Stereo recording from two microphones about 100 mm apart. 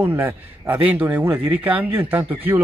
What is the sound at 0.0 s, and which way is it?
Speech, 20° right (ahead or behind).